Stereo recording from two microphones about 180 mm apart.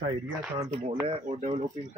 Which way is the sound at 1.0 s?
35° right (ahead or behind).